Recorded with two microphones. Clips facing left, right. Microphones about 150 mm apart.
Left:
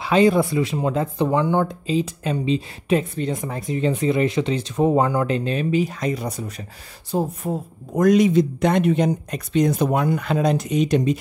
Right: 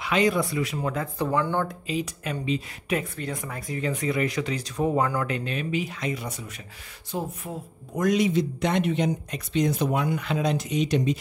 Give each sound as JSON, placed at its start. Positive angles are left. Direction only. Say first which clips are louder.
{"t": 0.0, "sound": "speech", "louder": "left 7 dB", "side_deg": 30}
{"t": 1.9, "sound": "speech", "louder": "left 7 dB", "side_deg": 30}